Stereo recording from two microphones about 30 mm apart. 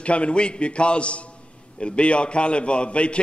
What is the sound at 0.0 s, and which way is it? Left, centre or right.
A man's voice, left.